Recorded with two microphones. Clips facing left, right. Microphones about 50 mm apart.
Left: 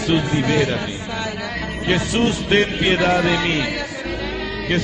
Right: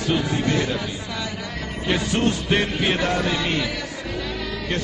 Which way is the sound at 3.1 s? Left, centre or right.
Left.